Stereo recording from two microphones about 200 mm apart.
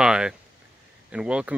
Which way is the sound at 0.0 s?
5° right (ahead or behind).